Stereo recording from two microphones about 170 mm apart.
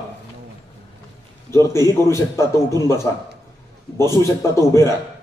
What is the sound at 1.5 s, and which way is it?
A man's voice, 15° left (ahead or behind).